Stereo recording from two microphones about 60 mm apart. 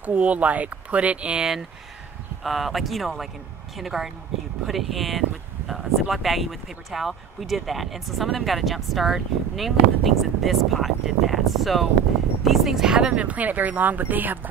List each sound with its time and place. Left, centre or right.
0.0 s speech: right
2.4 s speech: centre; by 14.5 s right